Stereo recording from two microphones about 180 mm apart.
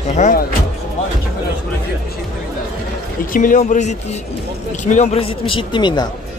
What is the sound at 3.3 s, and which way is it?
A man's voice, 45° left (ahead or behind).